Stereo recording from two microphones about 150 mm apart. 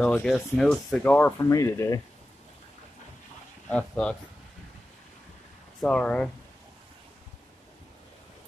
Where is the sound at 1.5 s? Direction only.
20° left (ahead or behind).